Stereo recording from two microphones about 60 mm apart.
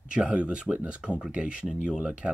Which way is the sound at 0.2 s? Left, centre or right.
Right.